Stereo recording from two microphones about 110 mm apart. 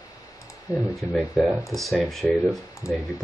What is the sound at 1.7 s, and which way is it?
Speech, centre (ahead or behind).